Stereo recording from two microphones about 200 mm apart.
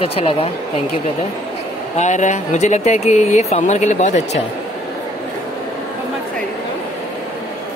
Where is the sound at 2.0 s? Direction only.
35° left (ahead or behind).